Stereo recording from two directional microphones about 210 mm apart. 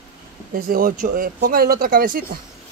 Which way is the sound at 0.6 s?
45° right (ahead or behind).